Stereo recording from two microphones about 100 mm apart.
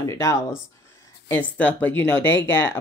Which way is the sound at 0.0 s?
30° left (ahead or behind).